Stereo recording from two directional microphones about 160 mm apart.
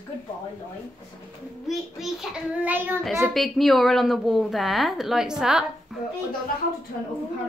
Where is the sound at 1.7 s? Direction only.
Centre (ahead or behind).